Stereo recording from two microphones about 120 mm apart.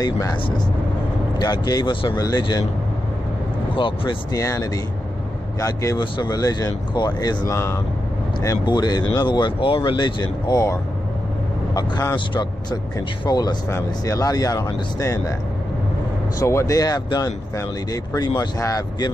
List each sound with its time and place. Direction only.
0.0 s speech: 30° left (ahead or behind)
1.4 s speech: 35° left (ahead or behind)
3.7 s speech: 45° left (ahead or behind)
4.3 s speech: 30° left (ahead or behind)
5.9 s speech: 35° left (ahead or behind)
8.6 s speech: 35° left (ahead or behind)
13.2 s speech: 35° left (ahead or behind)
16.3 s speech: 25° left (ahead or behind)